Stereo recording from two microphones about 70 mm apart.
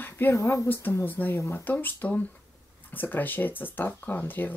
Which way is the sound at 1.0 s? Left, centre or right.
Left.